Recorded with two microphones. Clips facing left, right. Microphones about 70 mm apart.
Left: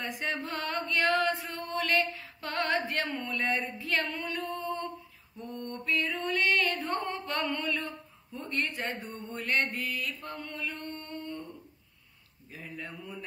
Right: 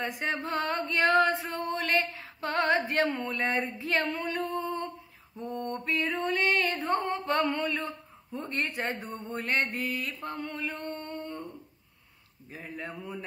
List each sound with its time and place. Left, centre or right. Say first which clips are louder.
0.0 s speech: right 3 dB; centre
1.4 s music: right 2 dB; right
3.3 s speech: right 2 dB; right
4.2 s a sound: right 3 dB; right
5.4 s speech: right 5 dB; right
10.3 s mantra: right 3 dB; right
12.5 s speech: right 2 dB; right